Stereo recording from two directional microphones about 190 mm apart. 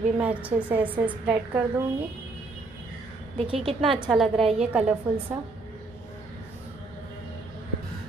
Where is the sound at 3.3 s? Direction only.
30° right (ahead or behind).